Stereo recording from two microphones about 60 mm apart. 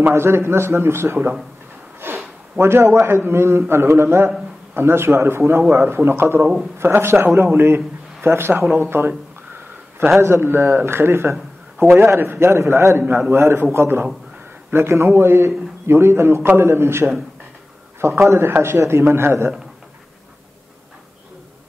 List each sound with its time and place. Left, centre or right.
0.0 s a man's voice: right
2.0 s a sound: right
2.6 s a man's voice: right
10.2 s a man's voice: right
18.5 s a man's voice: right
18.8 s a man's voice: right